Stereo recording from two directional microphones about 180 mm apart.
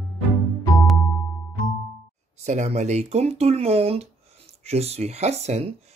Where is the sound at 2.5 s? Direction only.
40° right (ahead or behind).